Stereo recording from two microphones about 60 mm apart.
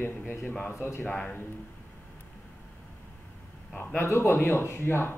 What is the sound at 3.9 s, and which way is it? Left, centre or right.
A man's voice, left.